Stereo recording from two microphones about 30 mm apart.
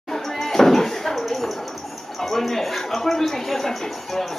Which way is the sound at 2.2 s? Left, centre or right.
Centre.